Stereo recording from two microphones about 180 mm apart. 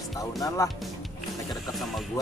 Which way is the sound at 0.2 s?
20° left (ahead or behind).